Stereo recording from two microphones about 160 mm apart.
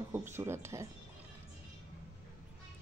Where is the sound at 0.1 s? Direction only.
15° right (ahead or behind).